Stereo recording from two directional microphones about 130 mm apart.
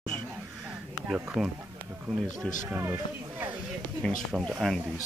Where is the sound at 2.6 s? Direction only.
20° right (ahead or behind).